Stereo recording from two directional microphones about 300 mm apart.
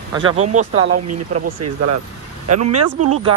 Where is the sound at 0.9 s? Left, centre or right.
Right.